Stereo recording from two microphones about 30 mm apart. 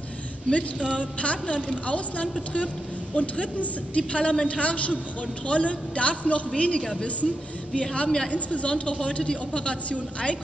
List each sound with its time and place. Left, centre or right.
0.5 s a woman's voice: left